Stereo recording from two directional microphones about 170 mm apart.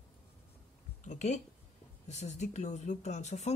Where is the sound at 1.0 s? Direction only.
45° left (ahead or behind).